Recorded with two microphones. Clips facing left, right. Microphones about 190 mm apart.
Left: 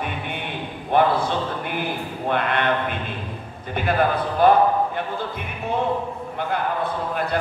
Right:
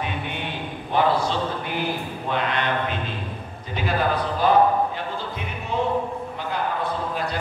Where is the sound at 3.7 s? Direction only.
55° left (ahead or behind).